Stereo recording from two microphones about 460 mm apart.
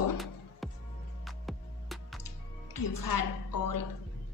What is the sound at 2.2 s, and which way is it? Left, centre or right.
Music, left.